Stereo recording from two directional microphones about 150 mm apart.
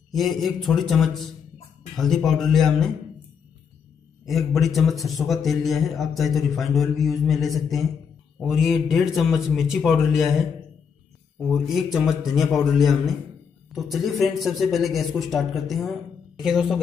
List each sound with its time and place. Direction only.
0.1 s a man's voice: centre (ahead or behind)
4.3 s a man's voice: centre (ahead or behind)
11.4 s a man's voice: centre (ahead or behind)